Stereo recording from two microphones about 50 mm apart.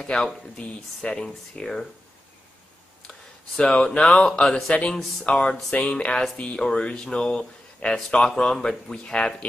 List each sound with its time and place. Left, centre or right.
0.0 s speech: left
3.1 s speech: left